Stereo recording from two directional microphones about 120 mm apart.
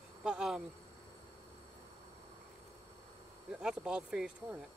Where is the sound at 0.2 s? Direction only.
5° right (ahead or behind).